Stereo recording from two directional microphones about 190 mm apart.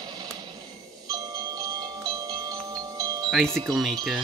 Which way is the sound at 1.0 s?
20° right (ahead or behind).